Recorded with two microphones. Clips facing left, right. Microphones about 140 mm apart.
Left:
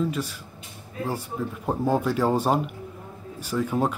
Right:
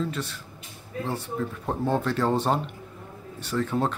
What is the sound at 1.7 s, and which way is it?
Speech, 10° left (ahead or behind).